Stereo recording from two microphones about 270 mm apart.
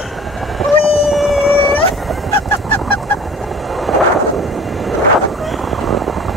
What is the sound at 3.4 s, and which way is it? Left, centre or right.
Vehicle, centre.